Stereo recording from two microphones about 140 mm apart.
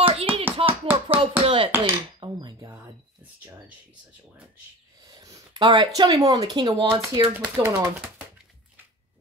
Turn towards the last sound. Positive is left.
turn(degrees=-20)  # may be behind; listen again after turning